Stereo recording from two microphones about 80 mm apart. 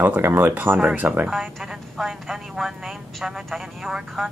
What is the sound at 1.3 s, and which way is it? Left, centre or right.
A woman's voice, centre.